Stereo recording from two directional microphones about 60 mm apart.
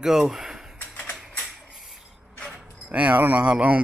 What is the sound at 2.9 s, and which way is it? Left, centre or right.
Speech, right.